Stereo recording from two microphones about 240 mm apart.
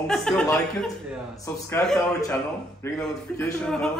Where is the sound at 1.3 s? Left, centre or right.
Centre.